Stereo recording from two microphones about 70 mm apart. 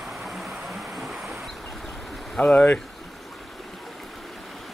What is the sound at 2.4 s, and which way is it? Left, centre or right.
Speech, left.